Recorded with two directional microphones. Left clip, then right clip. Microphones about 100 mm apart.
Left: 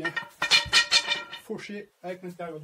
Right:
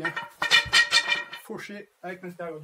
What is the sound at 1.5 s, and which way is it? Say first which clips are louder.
Speech: left 1 dB; 10° left (ahead or behind).